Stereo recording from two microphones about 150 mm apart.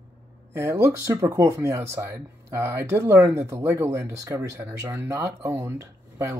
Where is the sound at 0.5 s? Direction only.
20° right (ahead or behind).